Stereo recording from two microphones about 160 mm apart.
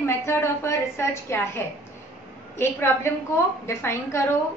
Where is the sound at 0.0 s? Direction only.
15° left (ahead or behind).